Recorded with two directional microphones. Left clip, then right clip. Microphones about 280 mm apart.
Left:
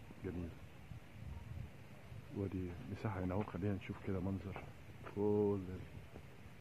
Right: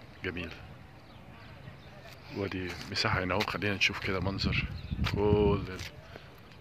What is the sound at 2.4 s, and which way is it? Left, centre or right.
Speech, right.